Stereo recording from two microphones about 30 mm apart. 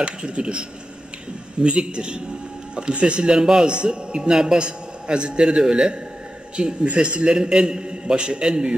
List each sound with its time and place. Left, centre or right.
0.0 s a man's voice: right
3.3 s a man's voice: centre
3.6 s speech: right
4.2 s a man's voice: centre
4.6 s a man's voice: right
6.5 s speech: right
7.2 s a man's voice: centre